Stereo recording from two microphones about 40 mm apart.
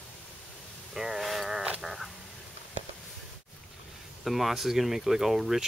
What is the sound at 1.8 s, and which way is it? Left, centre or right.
Frog, centre.